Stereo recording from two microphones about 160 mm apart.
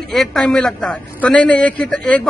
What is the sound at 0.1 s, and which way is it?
A man's voice, centre (ahead or behind).